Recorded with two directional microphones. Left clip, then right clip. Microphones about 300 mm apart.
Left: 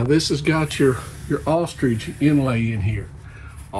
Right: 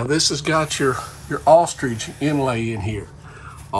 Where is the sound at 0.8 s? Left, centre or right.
Left.